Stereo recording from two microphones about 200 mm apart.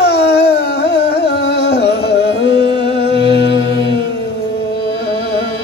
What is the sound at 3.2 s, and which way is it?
Music, 60° left (ahead or behind).